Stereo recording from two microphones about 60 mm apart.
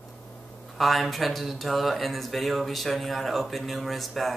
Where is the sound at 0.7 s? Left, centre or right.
Centre.